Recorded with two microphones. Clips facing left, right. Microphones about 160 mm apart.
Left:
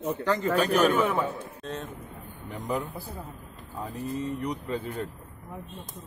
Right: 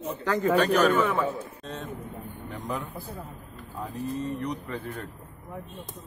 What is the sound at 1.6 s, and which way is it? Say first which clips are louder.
Speech: left 2 dB; centre (ahead or behind).